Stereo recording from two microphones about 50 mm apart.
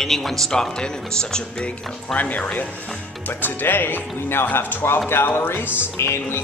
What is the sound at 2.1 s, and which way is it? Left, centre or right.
Speech, left.